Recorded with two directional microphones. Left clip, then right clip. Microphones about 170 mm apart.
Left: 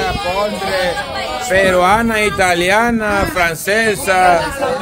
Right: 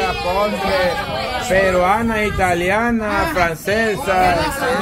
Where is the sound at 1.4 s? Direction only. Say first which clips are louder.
Left 4 dB; 30° left (ahead or behind).